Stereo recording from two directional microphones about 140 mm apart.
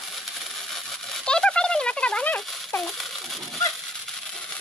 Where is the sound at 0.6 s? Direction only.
Centre (ahead or behind).